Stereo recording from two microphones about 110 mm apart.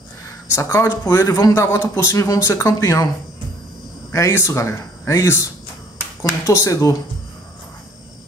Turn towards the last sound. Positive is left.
turn(degrees=30)  # may be behind; listen again after turning